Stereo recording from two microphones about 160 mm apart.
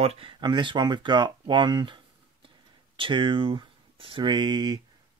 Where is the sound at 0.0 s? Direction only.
35° right (ahead or behind).